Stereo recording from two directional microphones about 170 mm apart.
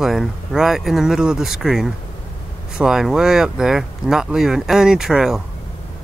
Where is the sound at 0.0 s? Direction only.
Centre (ahead or behind).